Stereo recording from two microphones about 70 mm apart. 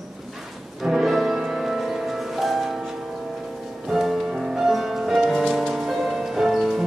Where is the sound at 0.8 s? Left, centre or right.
Centre.